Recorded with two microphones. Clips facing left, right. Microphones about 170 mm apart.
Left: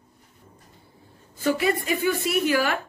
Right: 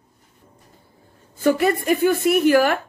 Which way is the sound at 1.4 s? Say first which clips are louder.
Right 5 dB; 50° right (ahead or behind).